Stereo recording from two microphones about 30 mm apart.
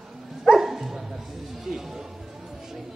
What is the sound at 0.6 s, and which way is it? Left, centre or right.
Dog, centre.